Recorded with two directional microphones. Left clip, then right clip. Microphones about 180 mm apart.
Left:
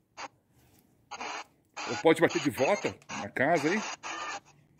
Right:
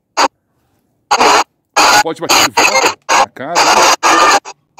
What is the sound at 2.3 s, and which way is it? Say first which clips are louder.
Speech: right 19 dB; 75° right (ahead or behind).